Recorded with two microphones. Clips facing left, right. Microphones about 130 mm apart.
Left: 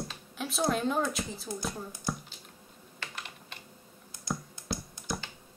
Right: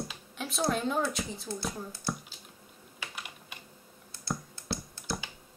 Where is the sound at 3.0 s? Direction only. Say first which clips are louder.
Even; 10° right (ahead or behind).